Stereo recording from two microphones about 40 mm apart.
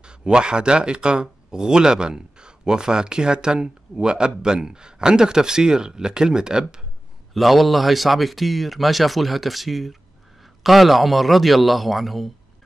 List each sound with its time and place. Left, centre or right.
0.0 s speech: right
7.3 s speech: centre